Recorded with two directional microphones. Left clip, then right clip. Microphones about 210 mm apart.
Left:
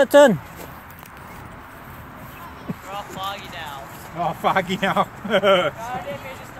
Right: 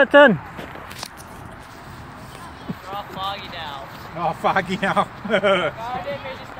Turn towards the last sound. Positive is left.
turn(degrees=5)  # may be behind; listen again after turning